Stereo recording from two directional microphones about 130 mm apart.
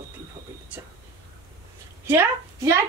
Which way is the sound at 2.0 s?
20° right (ahead or behind).